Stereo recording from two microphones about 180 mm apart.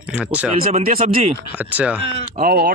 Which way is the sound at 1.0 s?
35° right (ahead or behind).